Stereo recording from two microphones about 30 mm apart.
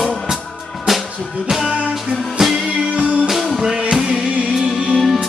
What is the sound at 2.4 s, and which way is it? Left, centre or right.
Music, centre.